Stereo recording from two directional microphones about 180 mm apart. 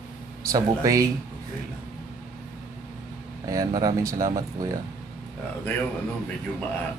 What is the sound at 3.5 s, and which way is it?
Speech, 20° right (ahead or behind).